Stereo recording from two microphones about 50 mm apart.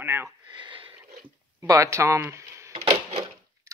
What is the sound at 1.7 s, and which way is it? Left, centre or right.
Speech, right.